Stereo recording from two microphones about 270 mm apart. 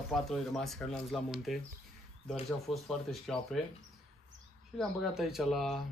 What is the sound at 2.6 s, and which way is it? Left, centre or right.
Speech, centre.